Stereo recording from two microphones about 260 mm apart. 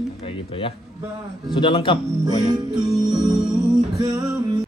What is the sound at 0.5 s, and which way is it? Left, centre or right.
Speech, left.